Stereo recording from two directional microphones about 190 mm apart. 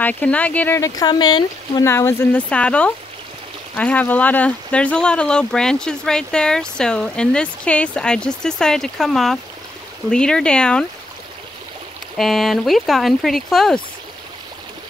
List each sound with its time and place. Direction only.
0.0 s speech: 5° left (ahead or behind)
12.2 s speech: centre (ahead or behind)